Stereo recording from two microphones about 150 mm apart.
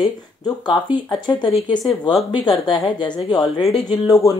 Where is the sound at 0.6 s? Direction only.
30° left (ahead or behind).